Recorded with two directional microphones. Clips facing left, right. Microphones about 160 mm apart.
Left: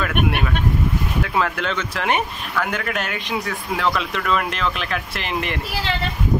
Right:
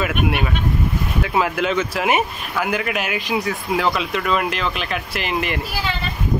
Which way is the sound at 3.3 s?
15° right (ahead or behind).